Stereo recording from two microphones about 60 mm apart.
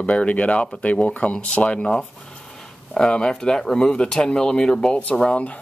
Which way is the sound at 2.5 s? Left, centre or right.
Centre.